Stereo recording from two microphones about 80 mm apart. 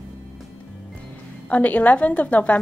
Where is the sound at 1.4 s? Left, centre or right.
Centre.